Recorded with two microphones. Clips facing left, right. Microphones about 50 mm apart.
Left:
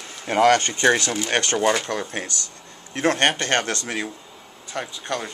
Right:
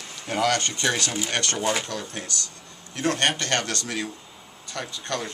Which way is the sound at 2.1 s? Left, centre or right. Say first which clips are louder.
Left 4 dB; left.